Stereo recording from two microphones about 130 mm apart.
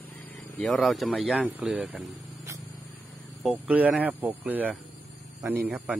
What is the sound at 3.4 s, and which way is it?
Speech, 10° right (ahead or behind).